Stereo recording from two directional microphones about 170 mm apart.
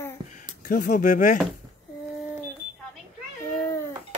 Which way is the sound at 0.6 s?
50° left (ahead or behind).